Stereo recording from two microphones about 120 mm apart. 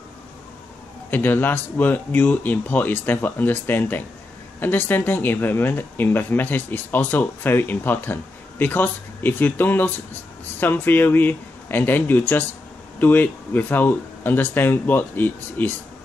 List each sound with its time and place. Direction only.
1.1 s speech: 15° left (ahead or behind)